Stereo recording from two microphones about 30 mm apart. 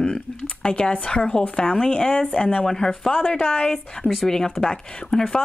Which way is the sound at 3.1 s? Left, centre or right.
Left.